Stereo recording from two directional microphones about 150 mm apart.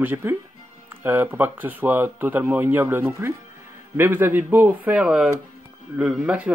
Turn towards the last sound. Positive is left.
turn(degrees=-5)  # may be behind; listen again after turning